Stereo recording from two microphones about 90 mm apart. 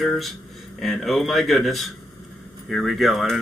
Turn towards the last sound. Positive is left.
turn(degrees=0)  # may be behind; listen again after turning